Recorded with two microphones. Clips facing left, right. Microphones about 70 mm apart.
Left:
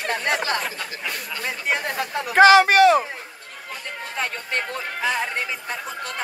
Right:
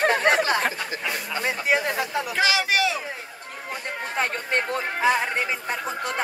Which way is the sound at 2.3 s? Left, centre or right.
Left.